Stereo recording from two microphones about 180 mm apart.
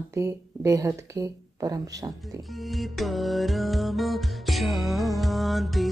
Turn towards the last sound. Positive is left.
turn(degrees=0)  # may be behind; listen again after turning